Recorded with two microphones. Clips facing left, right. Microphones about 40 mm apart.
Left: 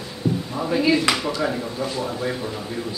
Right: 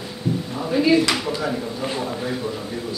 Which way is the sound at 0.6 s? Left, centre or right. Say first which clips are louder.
Right 2 dB; centre.